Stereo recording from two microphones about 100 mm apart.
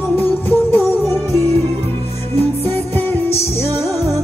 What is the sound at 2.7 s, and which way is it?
Music, 20° left (ahead or behind).